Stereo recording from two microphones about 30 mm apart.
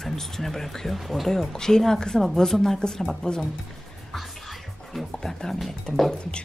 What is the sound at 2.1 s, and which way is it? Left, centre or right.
Speech, centre.